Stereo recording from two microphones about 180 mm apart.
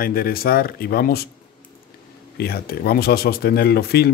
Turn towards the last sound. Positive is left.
turn(degrees=60)  # may be behind; listen again after turning